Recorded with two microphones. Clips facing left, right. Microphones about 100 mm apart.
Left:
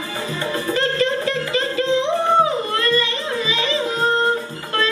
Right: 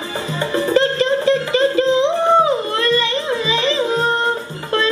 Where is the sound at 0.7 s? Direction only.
25° right (ahead or behind).